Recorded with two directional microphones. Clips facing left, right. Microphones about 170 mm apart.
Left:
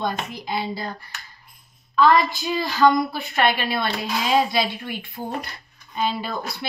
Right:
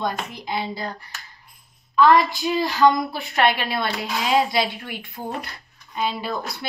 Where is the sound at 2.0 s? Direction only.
15° right (ahead or behind).